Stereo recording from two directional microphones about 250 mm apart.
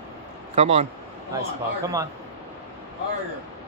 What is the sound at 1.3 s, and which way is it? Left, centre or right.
Speech, centre.